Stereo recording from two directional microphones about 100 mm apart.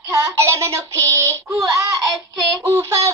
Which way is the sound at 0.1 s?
30° right (ahead or behind).